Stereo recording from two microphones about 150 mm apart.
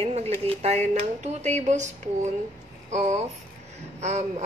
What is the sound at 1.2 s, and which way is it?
Speech, 50° right (ahead or behind).